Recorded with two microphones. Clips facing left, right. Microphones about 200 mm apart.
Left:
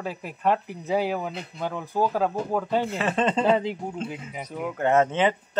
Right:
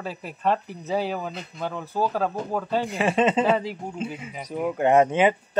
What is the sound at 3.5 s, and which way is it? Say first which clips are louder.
Speech: left 1 dB; 20° left (ahead or behind).